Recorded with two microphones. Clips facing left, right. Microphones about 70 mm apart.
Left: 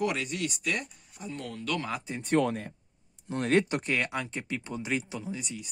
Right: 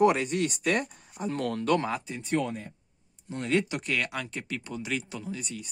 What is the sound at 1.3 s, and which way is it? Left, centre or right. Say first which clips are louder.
Speech: right 8 dB; right.